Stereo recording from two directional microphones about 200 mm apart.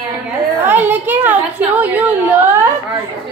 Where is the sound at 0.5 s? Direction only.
10° right (ahead or behind).